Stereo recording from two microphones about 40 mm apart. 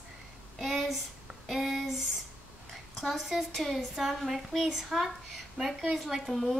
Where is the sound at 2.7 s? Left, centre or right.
Centre.